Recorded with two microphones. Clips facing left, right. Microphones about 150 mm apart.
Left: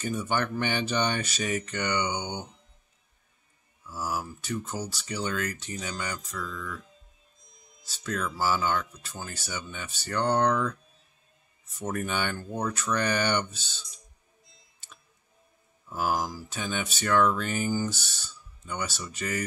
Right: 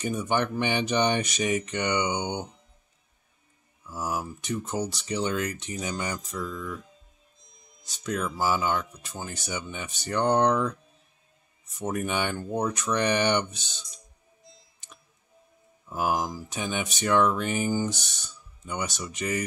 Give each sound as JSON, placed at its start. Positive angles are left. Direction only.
{"t": 0.0, "sound": "speech", "side_deg": -15}
{"t": 3.9, "sound": "speech", "side_deg": -20}
{"t": 7.8, "sound": "speech", "side_deg": -15}
{"t": 11.8, "sound": "speech", "side_deg": -15}
{"t": 15.9, "sound": "speech", "side_deg": -20}